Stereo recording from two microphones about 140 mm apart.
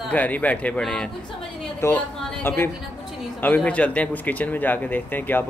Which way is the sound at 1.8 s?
20° left (ahead or behind).